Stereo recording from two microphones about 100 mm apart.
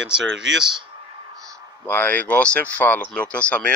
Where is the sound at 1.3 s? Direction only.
35° right (ahead or behind).